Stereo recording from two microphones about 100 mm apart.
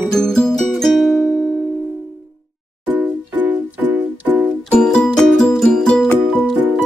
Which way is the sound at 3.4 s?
15° right (ahead or behind).